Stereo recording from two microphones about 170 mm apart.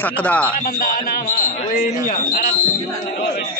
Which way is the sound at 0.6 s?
55° left (ahead or behind).